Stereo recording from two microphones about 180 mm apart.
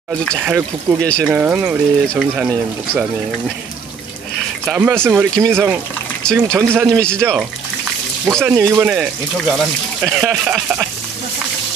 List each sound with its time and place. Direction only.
0.5 s speech: 10° right (ahead or behind)
1.0 s speech: 5° left (ahead or behind)
1.3 s speech: 10° right (ahead or behind)
4.6 s speech: 10° right (ahead or behind)
6.2 s speech: 5° left (ahead or behind)
6.7 s speech: 10° right (ahead or behind)
7.0 s speech: 5° left (ahead or behind)
8.5 s speech: 15° right (ahead or behind)